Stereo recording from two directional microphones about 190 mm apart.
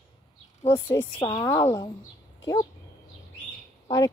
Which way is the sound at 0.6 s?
25° left (ahead or behind).